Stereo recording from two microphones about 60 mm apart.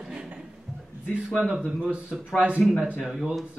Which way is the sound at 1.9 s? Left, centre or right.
Centre.